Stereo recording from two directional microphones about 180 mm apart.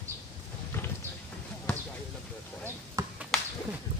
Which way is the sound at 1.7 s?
5° left (ahead or behind).